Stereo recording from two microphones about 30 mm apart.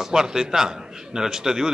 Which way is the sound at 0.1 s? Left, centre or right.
Centre.